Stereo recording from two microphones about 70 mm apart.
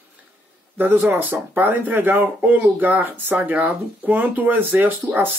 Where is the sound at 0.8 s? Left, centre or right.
Right.